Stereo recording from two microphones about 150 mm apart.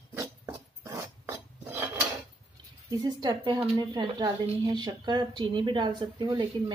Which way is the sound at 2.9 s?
25° right (ahead or behind).